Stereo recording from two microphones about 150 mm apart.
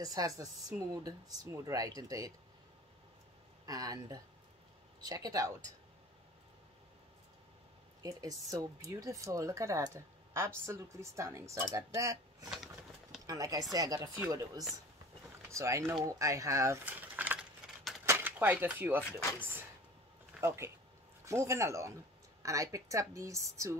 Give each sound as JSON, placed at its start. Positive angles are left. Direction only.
{"t": 0.0, "sound": "speech", "side_deg": -25}
{"t": 3.6, "sound": "speech", "side_deg": -25}
{"t": 8.0, "sound": "speech", "side_deg": -25}
{"t": 19.1, "sound": "speech", "side_deg": 15}
{"t": 20.3, "sound": "speech", "side_deg": -15}